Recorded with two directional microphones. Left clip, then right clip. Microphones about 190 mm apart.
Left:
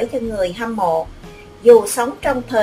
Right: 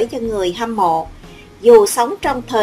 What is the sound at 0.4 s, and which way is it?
Speech, 45° right (ahead or behind).